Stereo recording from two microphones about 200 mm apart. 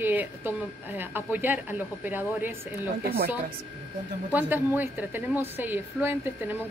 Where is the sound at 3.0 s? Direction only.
50° right (ahead or behind).